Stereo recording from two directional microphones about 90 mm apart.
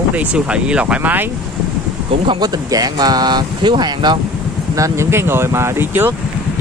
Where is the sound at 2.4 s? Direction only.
45° right (ahead or behind).